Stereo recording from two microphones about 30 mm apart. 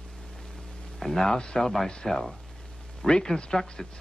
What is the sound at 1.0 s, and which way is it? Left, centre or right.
Speech, centre.